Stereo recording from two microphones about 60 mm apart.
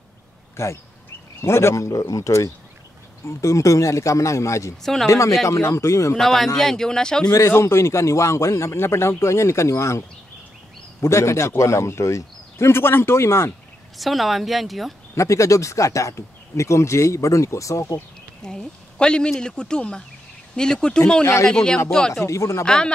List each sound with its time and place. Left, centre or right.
0.6 s a man's voice: left
1.9 s speech: left
4.8 s speech: centre
5.5 s speech: left
6.1 s a man's voice: centre
7.3 s a man's voice: left
13.9 s speech: centre
15.1 s speech: left
18.4 s a man's voice: centre
22.1 s a man's voice: left
22.7 s a man's voice: centre